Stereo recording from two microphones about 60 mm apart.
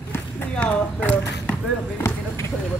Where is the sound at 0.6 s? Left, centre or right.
Left.